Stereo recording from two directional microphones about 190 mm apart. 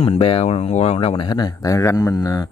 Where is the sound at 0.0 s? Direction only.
30° left (ahead or behind).